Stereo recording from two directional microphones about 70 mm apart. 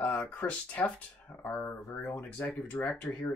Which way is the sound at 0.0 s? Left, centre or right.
Centre.